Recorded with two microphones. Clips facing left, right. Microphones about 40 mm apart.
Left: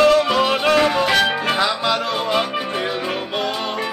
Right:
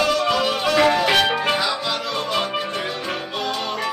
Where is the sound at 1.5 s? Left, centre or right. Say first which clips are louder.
Left 3 dB; left.